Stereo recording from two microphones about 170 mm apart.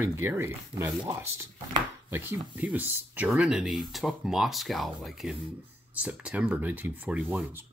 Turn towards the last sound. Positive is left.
turn(degrees=-10)  # may be behind; listen again after turning